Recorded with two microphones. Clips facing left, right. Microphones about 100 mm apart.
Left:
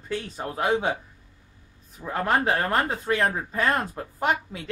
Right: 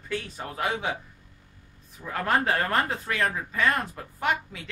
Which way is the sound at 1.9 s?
25° left (ahead or behind).